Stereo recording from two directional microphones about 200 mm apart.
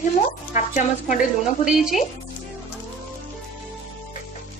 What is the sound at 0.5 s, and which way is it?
A woman's voice, 40° left (ahead or behind).